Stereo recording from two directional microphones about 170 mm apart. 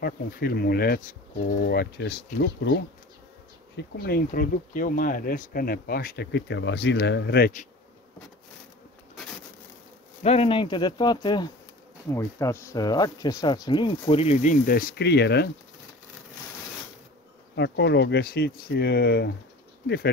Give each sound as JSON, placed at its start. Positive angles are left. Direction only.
{"t": 0.0, "sound": "speech", "side_deg": 65}
{"t": 3.7, "sound": "speech", "side_deg": 70}
{"t": 10.2, "sound": "speech", "side_deg": 35}
{"t": 17.6, "sound": "speech", "side_deg": 90}